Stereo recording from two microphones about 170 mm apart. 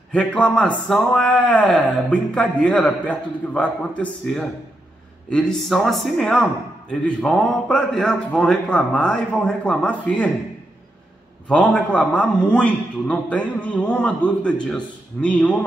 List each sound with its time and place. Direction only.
0.1 s a man's voice: 5° left (ahead or behind)
11.4 s speech: 5° left (ahead or behind)